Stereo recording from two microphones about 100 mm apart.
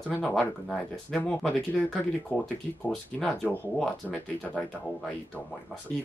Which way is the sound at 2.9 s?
5° left (ahead or behind).